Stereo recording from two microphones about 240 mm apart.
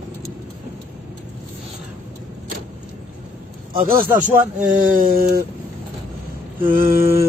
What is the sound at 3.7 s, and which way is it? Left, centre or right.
A man's voice, right.